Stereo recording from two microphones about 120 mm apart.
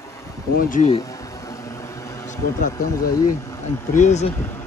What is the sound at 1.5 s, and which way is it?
Vehicle, 25° left (ahead or behind).